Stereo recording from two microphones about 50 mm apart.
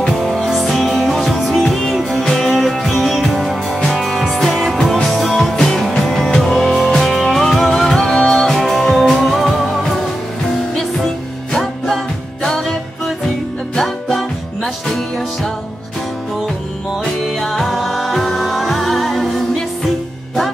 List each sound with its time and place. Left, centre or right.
0.2 s music: centre
12.4 s music: centre
17.4 s music: centre